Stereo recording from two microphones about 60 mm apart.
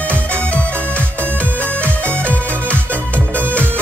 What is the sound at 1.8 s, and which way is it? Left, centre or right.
Music, left.